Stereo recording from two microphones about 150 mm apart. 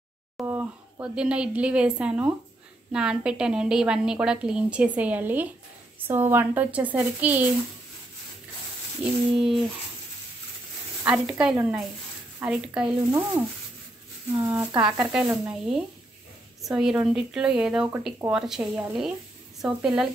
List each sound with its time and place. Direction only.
0.4 s a sound: 20° right (ahead or behind)
1.0 s a woman's voice: 5° right (ahead or behind)
9.0 s a woman's voice: 10° right (ahead or behind)
11.1 s a woman's voice: 5° right (ahead or behind)
14.3 s a woman's voice: 15° right (ahead or behind)